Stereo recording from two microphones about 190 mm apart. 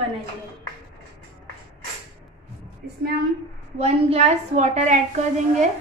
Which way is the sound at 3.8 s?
35° right (ahead or behind).